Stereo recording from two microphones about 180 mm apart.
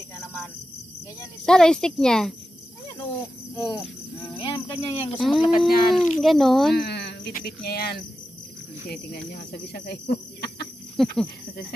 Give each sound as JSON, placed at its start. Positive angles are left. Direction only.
{"t": 1.4, "sound": "speech", "side_deg": 5}
{"t": 3.5, "sound": "speech", "side_deg": 20}
{"t": 5.1, "sound": "speech", "side_deg": 0}
{"t": 6.7, "sound": "a sound", "side_deg": 65}
{"t": 7.3, "sound": "cricket", "side_deg": 60}
{"t": 11.0, "sound": "speech", "side_deg": 0}